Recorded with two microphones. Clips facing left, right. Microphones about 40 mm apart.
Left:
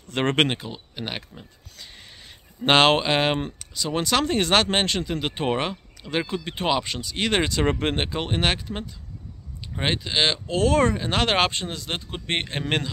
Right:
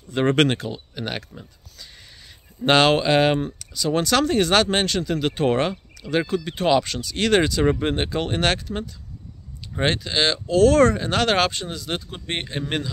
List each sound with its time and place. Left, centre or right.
0.1 s speech: left
0.5 s speech: centre
2.6 s speech: left
8.1 s speech: centre; by 12.9 s left